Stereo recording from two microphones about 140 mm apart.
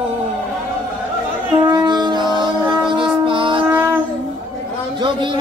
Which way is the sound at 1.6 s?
30° right (ahead or behind).